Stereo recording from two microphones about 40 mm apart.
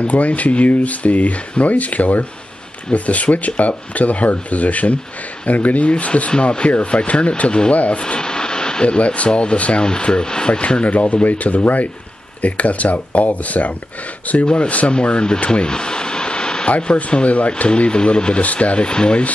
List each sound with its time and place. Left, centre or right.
0.0 s speech: left
6.3 s speech: left
7.7 s speech: left
8.0 s a sound: left
8.8 s speech: left
10.9 s speech: left
14.4 s speech: left